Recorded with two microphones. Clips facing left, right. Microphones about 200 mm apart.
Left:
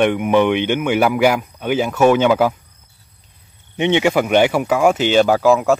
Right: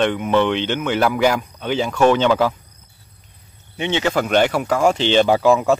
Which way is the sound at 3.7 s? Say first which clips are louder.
Left 4 dB; 20° left (ahead or behind).